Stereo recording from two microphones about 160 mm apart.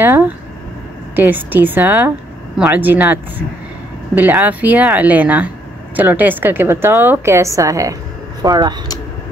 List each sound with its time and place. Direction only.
0.0 s a woman's voice: 15° right (ahead or behind)